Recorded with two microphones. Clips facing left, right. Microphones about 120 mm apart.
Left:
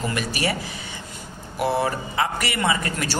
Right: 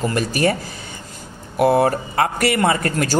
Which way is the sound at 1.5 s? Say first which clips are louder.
Right 7 dB; 50° right (ahead or behind).